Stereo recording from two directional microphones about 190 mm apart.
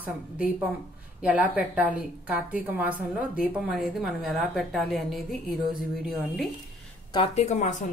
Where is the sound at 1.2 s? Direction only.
5° right (ahead or behind).